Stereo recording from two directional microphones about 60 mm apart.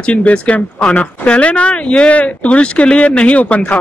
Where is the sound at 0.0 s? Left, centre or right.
Centre.